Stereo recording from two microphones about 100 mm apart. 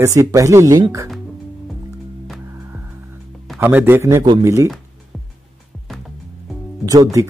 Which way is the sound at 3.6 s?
20° right (ahead or behind).